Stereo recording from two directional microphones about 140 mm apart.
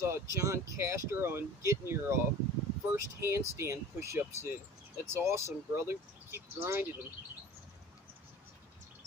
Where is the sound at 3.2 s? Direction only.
20° right (ahead or behind).